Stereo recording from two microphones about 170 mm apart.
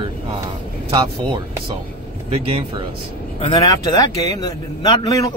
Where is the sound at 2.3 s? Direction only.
35° right (ahead or behind).